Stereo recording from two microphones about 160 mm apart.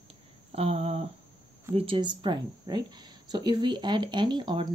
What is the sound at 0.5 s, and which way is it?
Speech, 40° right (ahead or behind).